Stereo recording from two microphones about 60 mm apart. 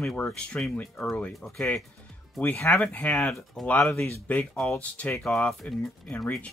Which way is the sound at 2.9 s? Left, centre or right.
Left.